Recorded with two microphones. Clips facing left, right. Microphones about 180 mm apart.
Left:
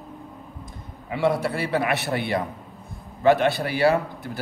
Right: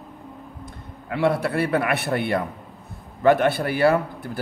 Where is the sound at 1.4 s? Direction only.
55° right (ahead or behind).